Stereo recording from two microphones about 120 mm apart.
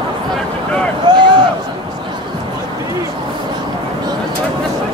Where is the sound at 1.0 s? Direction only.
40° right (ahead or behind).